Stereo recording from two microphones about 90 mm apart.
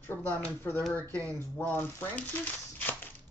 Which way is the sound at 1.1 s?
35° right (ahead or behind).